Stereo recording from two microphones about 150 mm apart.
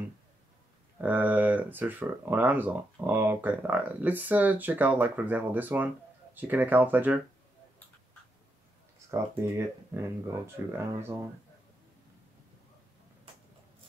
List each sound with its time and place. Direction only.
1.0 s speech: 10° right (ahead or behind)
9.1 s speech: 20° right (ahead or behind)